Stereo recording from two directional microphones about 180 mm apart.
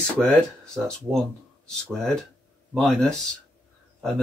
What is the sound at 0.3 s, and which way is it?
Speech, 5° left (ahead or behind).